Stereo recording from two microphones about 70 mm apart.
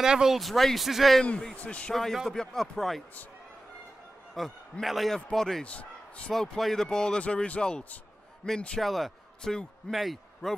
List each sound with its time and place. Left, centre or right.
0.0 s a man's voice: centre
1.6 s speech: centre
2.2 s a man's voice: centre
4.4 s a man's voice: centre
5.7 s speech: centre
6.3 s a man's voice: centre